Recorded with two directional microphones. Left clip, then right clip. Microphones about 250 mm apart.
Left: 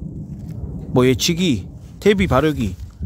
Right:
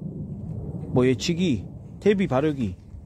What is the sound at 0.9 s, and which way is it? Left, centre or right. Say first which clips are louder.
Speech: left 6 dB; centre.